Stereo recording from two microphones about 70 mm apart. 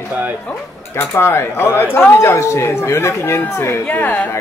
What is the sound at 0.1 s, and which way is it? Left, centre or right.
Speech, right.